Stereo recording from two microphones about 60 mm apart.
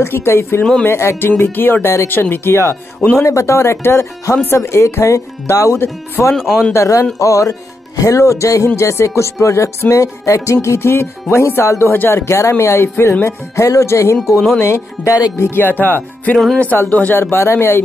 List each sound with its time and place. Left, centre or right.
0.0 s speech: left
3.2 s speech: left
5.7 s speech: left
6.3 s speech: centre
6.7 s speech: left
13.6 s speech: left